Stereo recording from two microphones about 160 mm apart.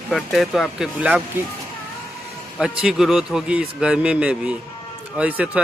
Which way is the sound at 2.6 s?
5° right (ahead or behind).